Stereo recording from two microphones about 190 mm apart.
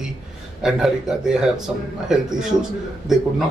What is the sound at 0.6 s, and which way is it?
Speech, 5° right (ahead or behind).